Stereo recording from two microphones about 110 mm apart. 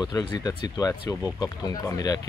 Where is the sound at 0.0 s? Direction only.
40° left (ahead or behind).